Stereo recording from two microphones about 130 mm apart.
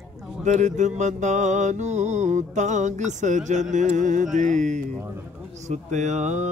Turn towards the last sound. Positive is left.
turn(degrees=-65)  # may be behind; listen again after turning